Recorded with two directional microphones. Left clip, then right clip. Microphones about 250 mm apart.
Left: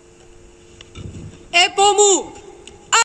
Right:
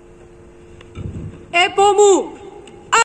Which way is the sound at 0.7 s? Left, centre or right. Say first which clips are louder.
Right 3 dB; left.